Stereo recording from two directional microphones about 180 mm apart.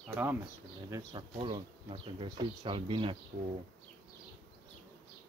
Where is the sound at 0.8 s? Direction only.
20° right (ahead or behind).